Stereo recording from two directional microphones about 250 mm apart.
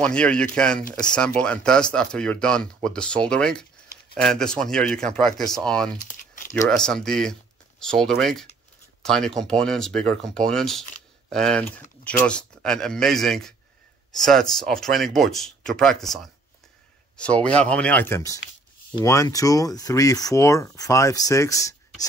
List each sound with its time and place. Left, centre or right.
0.0 s speech: centre
5.9 s crumpling: left
6.8 s speech: centre